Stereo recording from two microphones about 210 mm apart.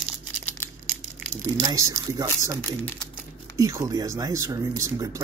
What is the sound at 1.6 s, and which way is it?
Speech, 15° right (ahead or behind).